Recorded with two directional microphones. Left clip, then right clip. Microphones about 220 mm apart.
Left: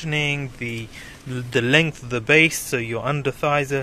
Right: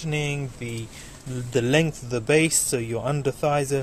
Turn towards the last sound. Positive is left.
turn(degrees=-5)  # may be behind; listen again after turning